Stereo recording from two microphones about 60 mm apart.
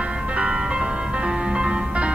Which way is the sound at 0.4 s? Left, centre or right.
Centre.